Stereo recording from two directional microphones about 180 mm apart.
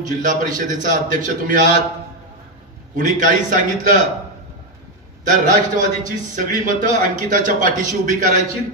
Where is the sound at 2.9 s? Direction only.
45° right (ahead or behind).